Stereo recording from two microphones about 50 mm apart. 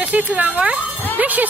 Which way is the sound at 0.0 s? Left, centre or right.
Right.